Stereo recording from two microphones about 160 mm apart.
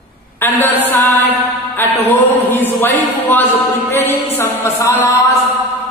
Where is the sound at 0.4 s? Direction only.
10° left (ahead or behind).